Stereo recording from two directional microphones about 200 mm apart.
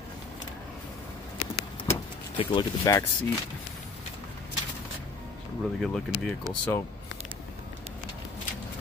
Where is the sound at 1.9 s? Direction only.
25° left (ahead or behind).